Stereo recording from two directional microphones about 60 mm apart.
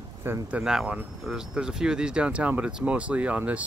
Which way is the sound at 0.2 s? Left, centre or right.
Right.